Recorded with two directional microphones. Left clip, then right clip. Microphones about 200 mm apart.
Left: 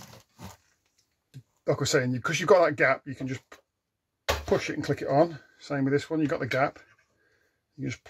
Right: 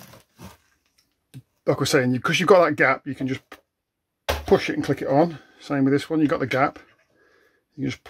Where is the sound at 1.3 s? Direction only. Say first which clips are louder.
Right 5 dB; 40° right (ahead or behind).